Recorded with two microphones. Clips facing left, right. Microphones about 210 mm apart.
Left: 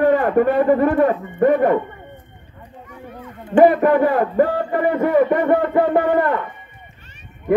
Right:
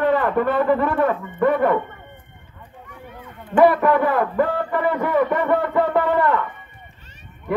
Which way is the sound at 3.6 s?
45° left (ahead or behind).